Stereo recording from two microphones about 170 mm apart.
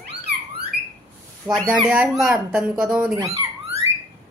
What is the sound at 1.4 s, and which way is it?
Speech, 5° right (ahead or behind).